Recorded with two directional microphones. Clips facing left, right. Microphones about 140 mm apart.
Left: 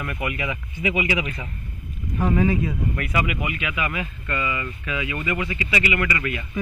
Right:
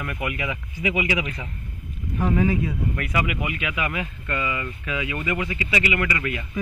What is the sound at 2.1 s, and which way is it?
Speech, 40° left (ahead or behind).